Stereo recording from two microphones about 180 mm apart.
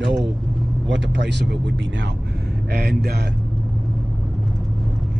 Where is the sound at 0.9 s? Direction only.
75° right (ahead or behind).